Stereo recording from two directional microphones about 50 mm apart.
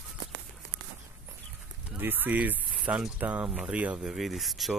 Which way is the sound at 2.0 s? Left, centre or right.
Right.